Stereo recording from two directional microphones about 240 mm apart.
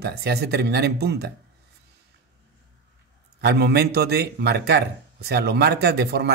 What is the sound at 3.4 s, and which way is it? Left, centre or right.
Speech, right.